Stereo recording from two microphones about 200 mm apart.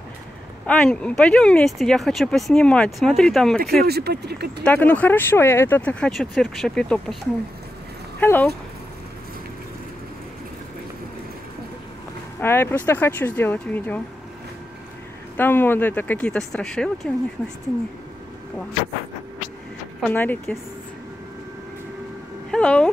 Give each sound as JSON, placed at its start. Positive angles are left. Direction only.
{"t": 0.7, "sound": "speech", "side_deg": 5}
{"t": 3.8, "sound": "speech", "side_deg": -55}
{"t": 4.6, "sound": "speech", "side_deg": 10}
{"t": 8.2, "sound": "dog", "side_deg": 10}
{"t": 12.4, "sound": "speech", "side_deg": 10}
{"t": 15.3, "sound": "speech", "side_deg": 10}
{"t": 20.0, "sound": "speech", "side_deg": 10}
{"t": 22.5, "sound": "speech", "side_deg": 5}